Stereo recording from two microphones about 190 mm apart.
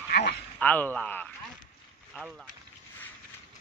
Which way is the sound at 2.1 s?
5° right (ahead or behind).